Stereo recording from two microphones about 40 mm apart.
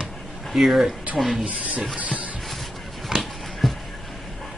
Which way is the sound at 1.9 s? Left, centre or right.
Right.